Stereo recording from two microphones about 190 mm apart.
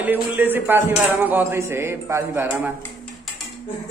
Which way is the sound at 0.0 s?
10° right (ahead or behind).